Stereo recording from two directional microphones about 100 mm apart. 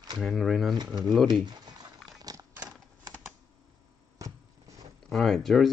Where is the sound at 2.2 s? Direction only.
40° right (ahead or behind).